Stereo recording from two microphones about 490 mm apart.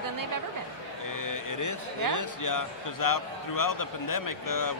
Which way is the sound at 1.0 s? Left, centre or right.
Left.